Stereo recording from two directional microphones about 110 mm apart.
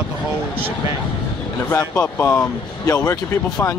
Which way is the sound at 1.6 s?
25° left (ahead or behind).